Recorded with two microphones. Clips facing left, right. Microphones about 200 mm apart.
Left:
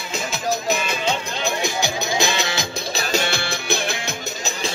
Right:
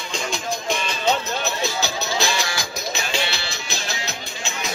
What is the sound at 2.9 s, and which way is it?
Music, 40° left (ahead or behind).